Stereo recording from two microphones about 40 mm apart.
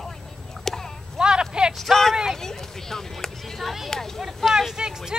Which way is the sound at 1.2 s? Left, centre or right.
Centre.